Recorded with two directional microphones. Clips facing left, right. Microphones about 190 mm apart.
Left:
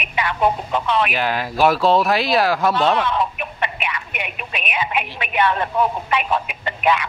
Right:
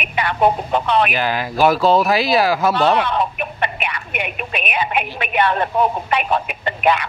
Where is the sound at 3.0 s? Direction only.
55° right (ahead or behind).